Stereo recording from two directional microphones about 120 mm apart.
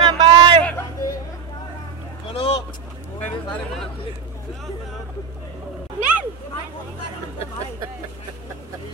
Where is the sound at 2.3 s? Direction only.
55° left (ahead or behind).